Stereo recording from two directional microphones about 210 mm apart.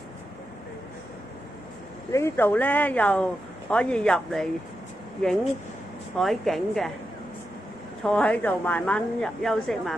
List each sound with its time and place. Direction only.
2.1 s a woman's voice: 10° left (ahead or behind)
8.0 s a woman's voice: 5° left (ahead or behind)